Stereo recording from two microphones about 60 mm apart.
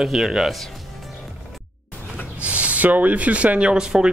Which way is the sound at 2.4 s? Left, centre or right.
Right.